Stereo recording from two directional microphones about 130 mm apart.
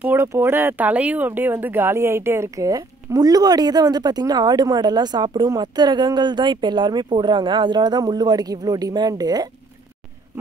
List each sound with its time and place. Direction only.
0.0 s speech: 20° right (ahead or behind)